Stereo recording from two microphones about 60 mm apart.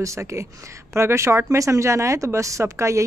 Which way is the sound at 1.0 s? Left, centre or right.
Right.